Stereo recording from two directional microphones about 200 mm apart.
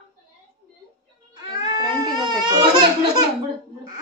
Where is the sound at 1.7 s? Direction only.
20° right (ahead or behind).